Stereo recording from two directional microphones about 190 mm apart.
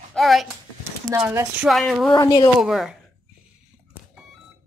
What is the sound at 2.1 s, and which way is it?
Speech, 20° left (ahead or behind).